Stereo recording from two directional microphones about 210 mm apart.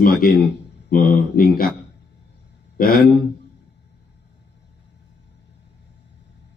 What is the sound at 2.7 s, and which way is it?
Speech, 45° left (ahead or behind).